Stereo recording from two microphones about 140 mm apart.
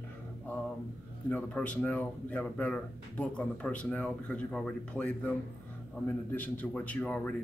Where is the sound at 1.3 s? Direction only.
10° left (ahead or behind).